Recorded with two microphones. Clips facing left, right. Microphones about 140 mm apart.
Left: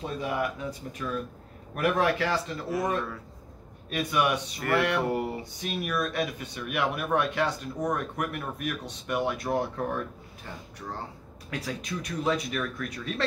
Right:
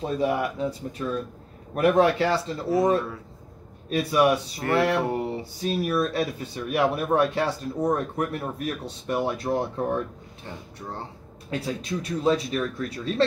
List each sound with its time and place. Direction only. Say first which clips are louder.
0.0 s speech: right 5 dB; 35° right (ahead or behind)
11.5 s speech: right 5 dB; 30° right (ahead or behind)